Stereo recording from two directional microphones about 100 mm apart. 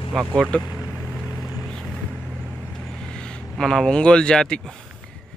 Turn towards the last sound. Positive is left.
turn(degrees=10)  # may be behind; listen again after turning